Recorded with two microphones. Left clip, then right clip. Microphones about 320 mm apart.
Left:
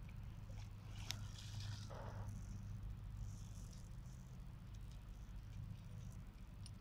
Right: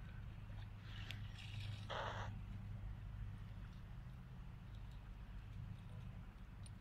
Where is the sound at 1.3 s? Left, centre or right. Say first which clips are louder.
Right 1 dB; centre.